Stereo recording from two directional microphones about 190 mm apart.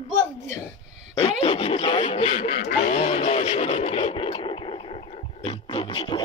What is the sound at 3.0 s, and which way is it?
Radio, 35° left (ahead or behind).